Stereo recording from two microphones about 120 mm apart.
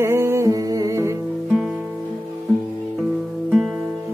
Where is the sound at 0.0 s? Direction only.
20° right (ahead or behind).